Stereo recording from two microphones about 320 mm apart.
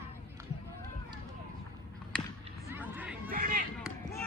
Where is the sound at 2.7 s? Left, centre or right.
Centre.